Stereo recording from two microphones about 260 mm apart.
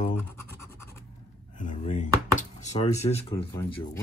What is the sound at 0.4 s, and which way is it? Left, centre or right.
Music, centre.